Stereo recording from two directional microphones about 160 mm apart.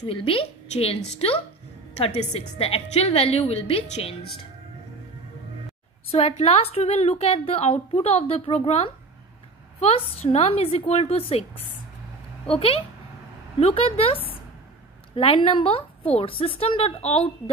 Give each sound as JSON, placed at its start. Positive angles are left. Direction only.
{"t": 0.0, "sound": "a woman's voice", "side_deg": 35}
{"t": 6.1, "sound": "a woman's voice", "side_deg": 40}
{"t": 12.4, "sound": "a woman's voice", "side_deg": 35}
{"t": 15.1, "sound": "a woman's voice", "side_deg": 35}